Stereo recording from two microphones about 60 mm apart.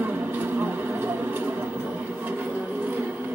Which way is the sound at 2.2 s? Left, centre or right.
Right.